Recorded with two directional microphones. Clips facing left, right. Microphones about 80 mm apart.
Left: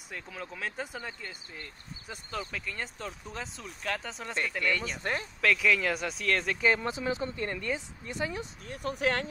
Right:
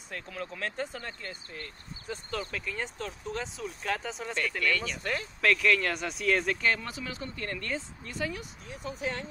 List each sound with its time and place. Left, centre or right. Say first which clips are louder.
0.1 s speech: right 2 dB; centre
4.4 s speech: even; centre
5.4 s speech: right 1 dB; centre
6.6 s speech: left 3 dB; left
8.6 s speech: left 5 dB; left